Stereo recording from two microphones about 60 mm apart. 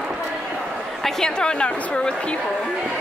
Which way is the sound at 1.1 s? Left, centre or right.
Centre.